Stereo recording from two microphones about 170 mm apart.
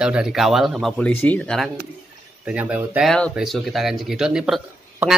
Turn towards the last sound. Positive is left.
turn(degrees=-5)  # may be behind; listen again after turning